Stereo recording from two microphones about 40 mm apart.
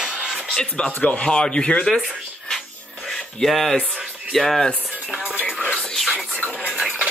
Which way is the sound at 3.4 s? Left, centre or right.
Centre.